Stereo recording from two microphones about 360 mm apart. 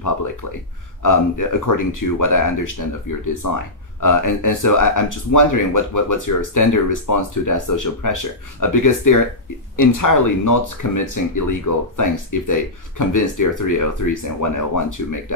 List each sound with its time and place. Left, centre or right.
0.0 s speech: left